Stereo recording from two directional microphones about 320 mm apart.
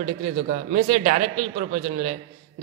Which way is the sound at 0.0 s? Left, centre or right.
Right.